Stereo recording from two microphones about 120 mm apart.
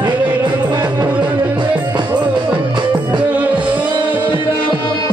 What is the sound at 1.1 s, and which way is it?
Music, 10° right (ahead or behind).